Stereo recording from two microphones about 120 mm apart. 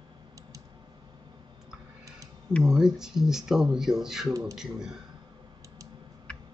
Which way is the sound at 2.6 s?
5° right (ahead or behind).